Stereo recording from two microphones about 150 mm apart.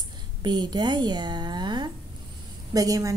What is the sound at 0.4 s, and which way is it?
A woman's voice, 30° right (ahead or behind).